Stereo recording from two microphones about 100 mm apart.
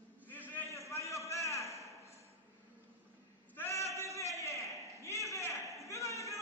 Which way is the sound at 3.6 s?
30° left (ahead or behind).